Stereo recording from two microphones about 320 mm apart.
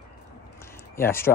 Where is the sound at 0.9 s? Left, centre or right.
Centre.